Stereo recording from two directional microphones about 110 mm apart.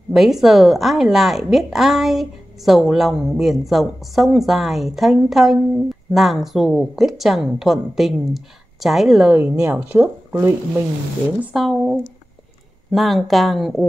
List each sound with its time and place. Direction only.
0.1 s a woman's voice: centre (ahead or behind)
9.3 s speech: 20° right (ahead or behind)
11.5 s a woman's voice: 5° right (ahead or behind)